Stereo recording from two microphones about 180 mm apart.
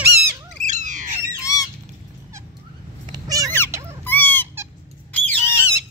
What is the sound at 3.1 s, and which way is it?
Cat, 20° right (ahead or behind).